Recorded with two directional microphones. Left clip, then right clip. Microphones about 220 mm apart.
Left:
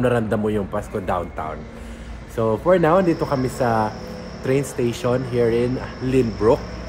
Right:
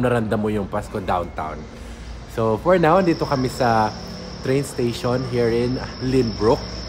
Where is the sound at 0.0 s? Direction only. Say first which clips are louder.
Left 1 dB; 5° right (ahead or behind).